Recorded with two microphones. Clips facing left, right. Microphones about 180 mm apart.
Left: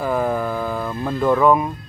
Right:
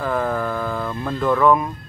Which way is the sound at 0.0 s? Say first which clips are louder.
Left 1 dB; 15° left (ahead or behind).